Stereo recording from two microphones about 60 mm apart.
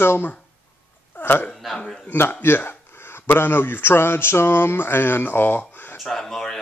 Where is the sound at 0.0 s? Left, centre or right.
Left.